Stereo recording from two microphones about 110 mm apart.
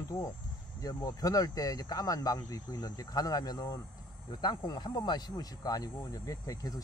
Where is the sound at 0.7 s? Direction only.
30° left (ahead or behind).